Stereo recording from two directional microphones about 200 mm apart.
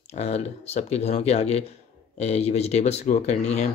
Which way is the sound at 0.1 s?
30° left (ahead or behind).